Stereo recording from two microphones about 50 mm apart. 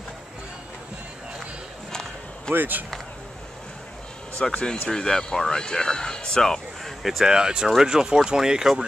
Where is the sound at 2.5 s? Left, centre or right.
Right.